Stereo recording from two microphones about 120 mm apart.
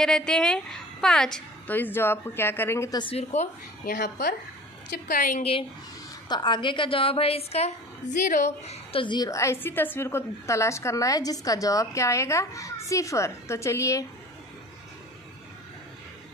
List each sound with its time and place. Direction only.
0.0 s a woman's voice: 5° left (ahead or behind)
1.8 s a woman's voice: 20° left (ahead or behind)
3.0 s a woman's voice: 55° left (ahead or behind)
5.0 s a woman's voice: 90° left
6.2 s a woman's voice: 40° left (ahead or behind); by 9.0 s 65° left (ahead or behind)
9.0 s a woman's voice: 40° left (ahead or behind)
9.3 s a woman's voice: 25° left (ahead or behind)